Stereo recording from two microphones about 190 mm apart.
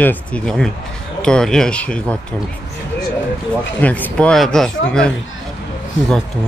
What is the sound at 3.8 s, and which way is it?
Speech, 5° left (ahead or behind).